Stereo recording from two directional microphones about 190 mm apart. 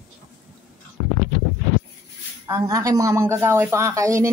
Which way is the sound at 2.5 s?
15° right (ahead or behind).